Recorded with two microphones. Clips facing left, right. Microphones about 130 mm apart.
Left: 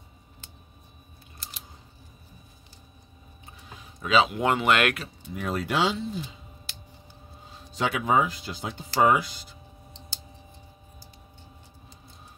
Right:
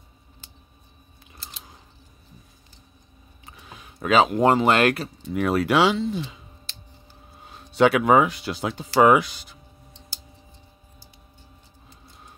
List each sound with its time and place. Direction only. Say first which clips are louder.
3.4 s speech: right 2 dB; 70° right (ahead or behind); by 5.1 s 35° right (ahead or behind)
5.3 s speech: right 8 dB; 75° right (ahead or behind)
7.4 s speech: right 10 dB; 70° right (ahead or behind)